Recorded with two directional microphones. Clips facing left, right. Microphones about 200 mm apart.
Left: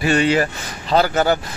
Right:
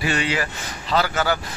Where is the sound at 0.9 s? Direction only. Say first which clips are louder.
Left 5 dB; 30° left (ahead or behind).